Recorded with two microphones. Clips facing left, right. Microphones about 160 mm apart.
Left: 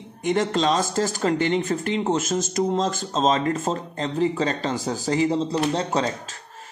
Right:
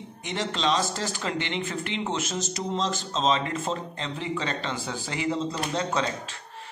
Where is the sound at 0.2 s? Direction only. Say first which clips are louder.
Left 7 dB; 50° left (ahead or behind).